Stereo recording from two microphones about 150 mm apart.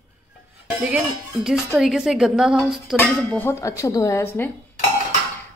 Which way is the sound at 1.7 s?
Centre (ahead or behind).